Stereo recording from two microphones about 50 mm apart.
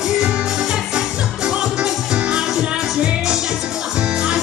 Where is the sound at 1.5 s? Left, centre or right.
Centre.